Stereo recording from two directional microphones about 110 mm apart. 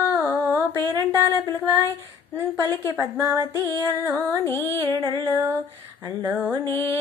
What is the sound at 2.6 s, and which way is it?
Music, 25° left (ahead or behind).